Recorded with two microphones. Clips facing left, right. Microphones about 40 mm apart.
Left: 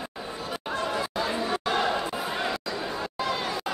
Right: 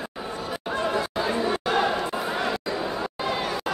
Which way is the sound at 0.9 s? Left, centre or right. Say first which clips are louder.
Right 3 dB; centre.